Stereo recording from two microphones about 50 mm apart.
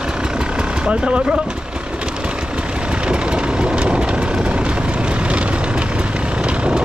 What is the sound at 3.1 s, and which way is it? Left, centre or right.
Vehicle, centre.